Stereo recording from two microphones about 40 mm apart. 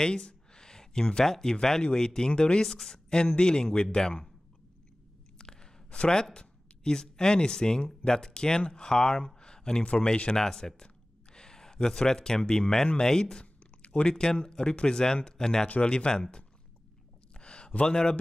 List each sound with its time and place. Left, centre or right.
0.0 s speech: left
2.6 s speech: centre
5.4 s a sound: centre
6.3 s speech: centre
9.8 s speech: left
10.3 s speech: centre
15.7 s speech: left
17.4 s a sound: left
17.8 s speech: centre